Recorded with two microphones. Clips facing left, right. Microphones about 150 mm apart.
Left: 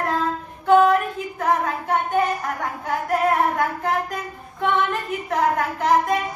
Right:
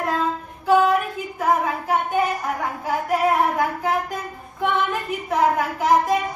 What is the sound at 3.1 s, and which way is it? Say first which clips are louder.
Speech: even; 5° right (ahead or behind).